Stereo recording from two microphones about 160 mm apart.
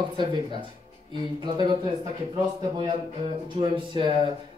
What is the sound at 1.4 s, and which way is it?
Speech, 30° right (ahead or behind).